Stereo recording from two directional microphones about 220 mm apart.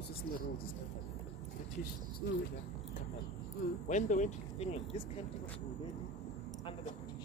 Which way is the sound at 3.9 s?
35° left (ahead or behind).